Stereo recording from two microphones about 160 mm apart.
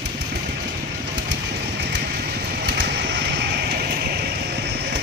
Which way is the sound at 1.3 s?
90° right.